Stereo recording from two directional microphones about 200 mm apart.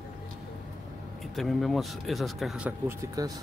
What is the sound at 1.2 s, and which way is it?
Speech, centre (ahead or behind).